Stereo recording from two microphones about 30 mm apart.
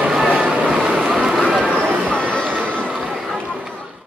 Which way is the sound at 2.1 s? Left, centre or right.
Left.